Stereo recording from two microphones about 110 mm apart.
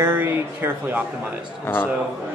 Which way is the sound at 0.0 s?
20° right (ahead or behind).